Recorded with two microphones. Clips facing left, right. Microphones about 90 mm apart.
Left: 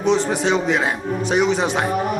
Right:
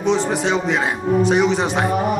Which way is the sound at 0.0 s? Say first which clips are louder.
Even; centre (ahead or behind).